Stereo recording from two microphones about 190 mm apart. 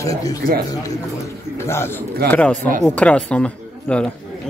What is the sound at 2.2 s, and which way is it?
Speech, 10° left (ahead or behind).